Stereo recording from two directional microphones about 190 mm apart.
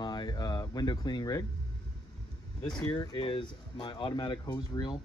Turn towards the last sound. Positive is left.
turn(degrees=25)  # may be behind; listen again after turning